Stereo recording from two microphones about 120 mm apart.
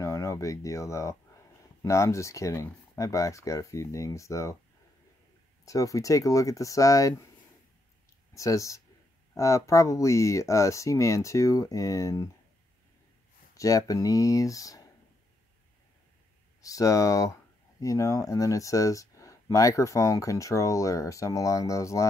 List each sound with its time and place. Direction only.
0.0 s speech: 25° left (ahead or behind)
5.7 s speech: 30° left (ahead or behind)
8.4 s speech: 25° left (ahead or behind)
13.6 s speech: 30° left (ahead or behind)
16.6 s speech: 30° left (ahead or behind)